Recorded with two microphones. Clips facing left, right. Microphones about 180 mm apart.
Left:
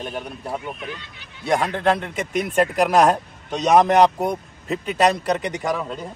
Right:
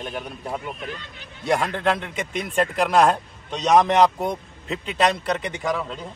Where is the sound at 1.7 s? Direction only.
35° left (ahead or behind).